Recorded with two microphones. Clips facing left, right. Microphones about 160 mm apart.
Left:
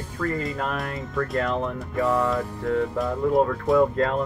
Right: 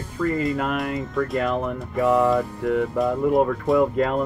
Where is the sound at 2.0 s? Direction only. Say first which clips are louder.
Right 5 dB; 15° right (ahead or behind).